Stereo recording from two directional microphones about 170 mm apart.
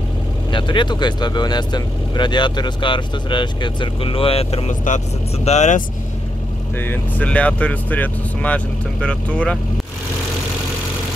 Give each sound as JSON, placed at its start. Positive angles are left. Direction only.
{"t": 0.5, "sound": "speech", "side_deg": 30}
{"t": 6.8, "sound": "speech", "side_deg": 10}